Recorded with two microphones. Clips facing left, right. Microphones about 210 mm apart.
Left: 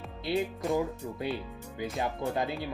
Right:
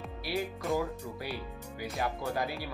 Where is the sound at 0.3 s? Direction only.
25° left (ahead or behind).